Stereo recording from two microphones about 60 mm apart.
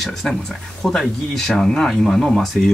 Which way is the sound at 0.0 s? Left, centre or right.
Centre.